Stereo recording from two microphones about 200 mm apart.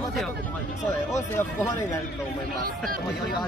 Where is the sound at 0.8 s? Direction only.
10° left (ahead or behind).